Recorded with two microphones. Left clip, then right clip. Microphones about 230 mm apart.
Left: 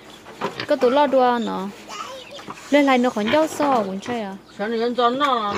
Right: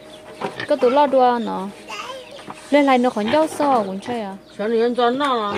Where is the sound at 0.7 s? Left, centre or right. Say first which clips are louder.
Right 2 dB; centre.